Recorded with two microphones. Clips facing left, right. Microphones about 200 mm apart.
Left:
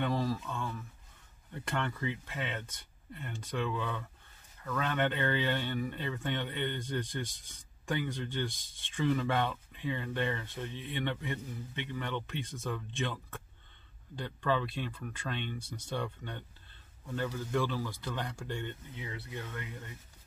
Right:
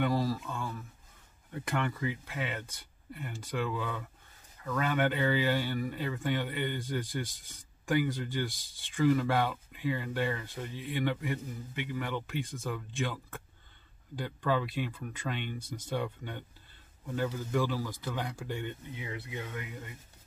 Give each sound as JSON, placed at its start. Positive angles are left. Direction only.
{"t": 0.0, "sound": "speech", "side_deg": -5}